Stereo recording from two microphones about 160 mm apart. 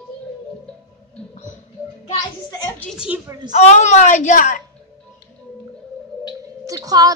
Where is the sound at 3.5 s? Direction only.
45° left (ahead or behind).